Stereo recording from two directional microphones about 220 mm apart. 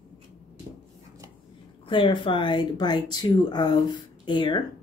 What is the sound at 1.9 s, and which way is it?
Speech, 20° left (ahead or behind).